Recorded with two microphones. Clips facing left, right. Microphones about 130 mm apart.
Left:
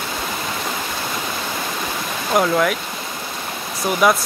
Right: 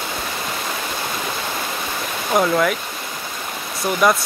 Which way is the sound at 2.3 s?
Centre (ahead or behind).